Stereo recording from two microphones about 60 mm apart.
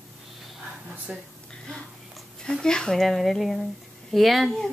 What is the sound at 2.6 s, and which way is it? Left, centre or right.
Speech, centre.